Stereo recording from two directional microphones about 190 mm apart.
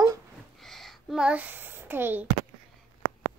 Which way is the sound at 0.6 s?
Centre (ahead or behind).